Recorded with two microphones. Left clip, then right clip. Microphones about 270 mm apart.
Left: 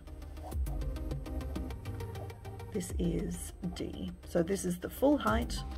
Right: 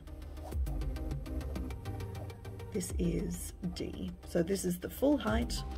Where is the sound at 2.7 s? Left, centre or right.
Centre.